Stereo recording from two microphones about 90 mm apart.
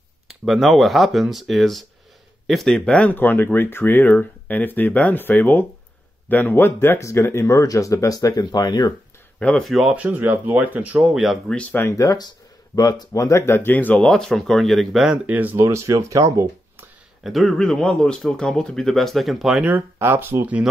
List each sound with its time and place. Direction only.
0.3 s speech: centre (ahead or behind); by 8.9 s 50° left (ahead or behind)
9.6 s speech: centre (ahead or behind)
9.9 s speech: 20° right (ahead or behind)
11.0 s speech: centre (ahead or behind)
11.5 s speech: 20° left (ahead or behind)
11.9 s speech: 40° left (ahead or behind); by 14.0 s 20° left (ahead or behind)
14.0 s speech: 5° left (ahead or behind)
15.2 s speech: 20° right (ahead or behind); by 16.4 s 35° right (ahead or behind)
17.2 s speech: centre (ahead or behind)
19.6 s speech: 20° right (ahead or behind)